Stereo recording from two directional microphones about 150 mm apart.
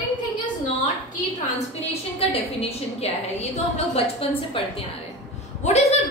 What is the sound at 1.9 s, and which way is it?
A woman's voice, 45° left (ahead or behind).